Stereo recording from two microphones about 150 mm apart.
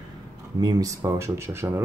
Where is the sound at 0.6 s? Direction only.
25° right (ahead or behind).